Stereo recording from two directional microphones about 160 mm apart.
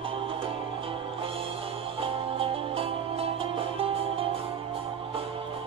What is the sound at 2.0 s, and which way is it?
Music, 35° right (ahead or behind).